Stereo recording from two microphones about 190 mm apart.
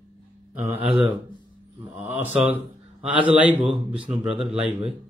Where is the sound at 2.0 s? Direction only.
10° right (ahead or behind).